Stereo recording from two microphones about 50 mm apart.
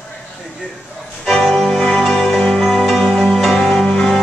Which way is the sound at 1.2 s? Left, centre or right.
Centre.